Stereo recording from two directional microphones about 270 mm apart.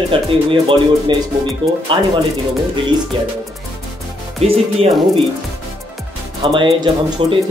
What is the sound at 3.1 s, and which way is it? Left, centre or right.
Speech, centre.